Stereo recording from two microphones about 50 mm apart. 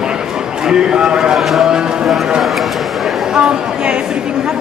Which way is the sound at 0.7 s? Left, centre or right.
Centre.